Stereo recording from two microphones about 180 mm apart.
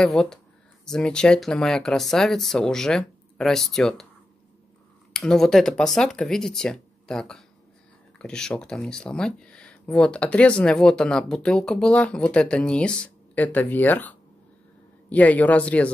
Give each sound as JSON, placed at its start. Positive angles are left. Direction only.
{"t": 0.0, "sound": "speech", "side_deg": 5}
{"t": 5.1, "sound": "speech", "side_deg": 5}